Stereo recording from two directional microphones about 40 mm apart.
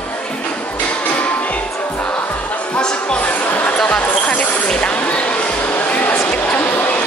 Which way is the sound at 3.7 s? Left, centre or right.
Left.